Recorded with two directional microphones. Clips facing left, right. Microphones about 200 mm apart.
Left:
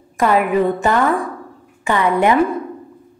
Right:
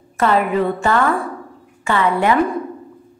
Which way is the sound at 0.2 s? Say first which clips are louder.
Left 1 dB; 15° left (ahead or behind).